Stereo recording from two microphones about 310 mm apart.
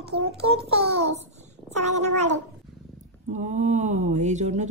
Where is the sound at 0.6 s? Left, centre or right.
Centre.